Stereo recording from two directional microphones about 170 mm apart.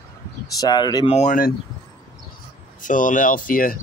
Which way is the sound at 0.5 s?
25° left (ahead or behind).